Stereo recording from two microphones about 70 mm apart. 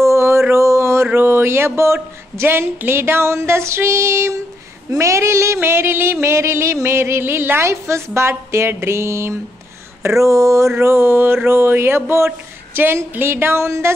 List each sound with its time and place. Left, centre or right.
0.0 s mantra: right
1.1 s a sound: right
2.3 s speech: right
10.8 s speech: right